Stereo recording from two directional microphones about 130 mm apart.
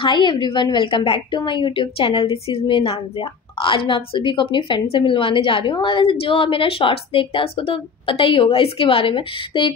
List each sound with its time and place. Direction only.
0.0 s a woman's voice: 35° left (ahead or behind)